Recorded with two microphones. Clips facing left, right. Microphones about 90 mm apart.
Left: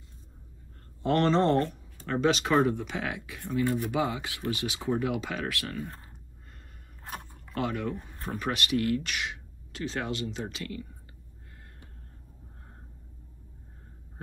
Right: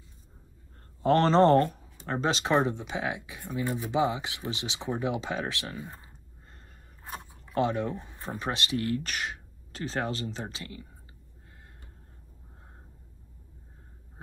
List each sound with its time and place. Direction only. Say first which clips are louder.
1.0 s speech: right 3 dB; 35° right (ahead or behind); by 6.0 s 15° right (ahead or behind)
7.2 s biting: right 5 dB; 25° right (ahead or behind)
8.0 s speech: left 1 dB; 20° right (ahead or behind)